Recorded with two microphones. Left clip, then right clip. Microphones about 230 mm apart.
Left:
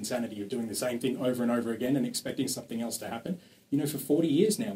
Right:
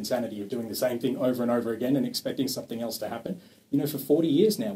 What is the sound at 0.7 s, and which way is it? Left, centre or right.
Speech, left.